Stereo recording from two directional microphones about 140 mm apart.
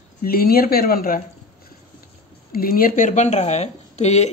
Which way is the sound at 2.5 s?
90° left.